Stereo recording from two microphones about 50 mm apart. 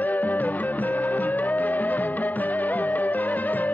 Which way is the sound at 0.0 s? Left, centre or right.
Left.